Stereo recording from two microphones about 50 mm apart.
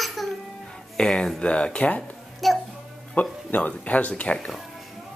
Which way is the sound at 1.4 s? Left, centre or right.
Left.